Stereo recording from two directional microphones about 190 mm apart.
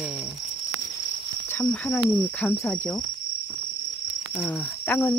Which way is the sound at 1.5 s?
10° left (ahead or behind).